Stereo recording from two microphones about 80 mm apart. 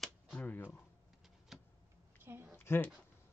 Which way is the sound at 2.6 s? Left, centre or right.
Left.